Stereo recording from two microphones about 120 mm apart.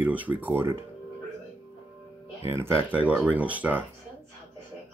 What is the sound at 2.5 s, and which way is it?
Speech, 20° right (ahead or behind).